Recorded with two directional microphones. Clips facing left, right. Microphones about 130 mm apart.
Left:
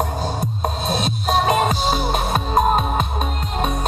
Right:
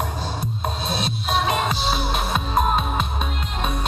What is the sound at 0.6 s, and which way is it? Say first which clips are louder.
Music: left 4 dB; 45° left (ahead or behind).